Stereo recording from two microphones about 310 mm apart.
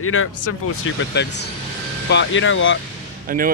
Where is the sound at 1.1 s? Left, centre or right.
Left.